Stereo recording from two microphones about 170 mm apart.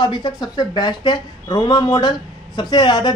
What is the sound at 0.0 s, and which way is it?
Speech, 25° left (ahead or behind).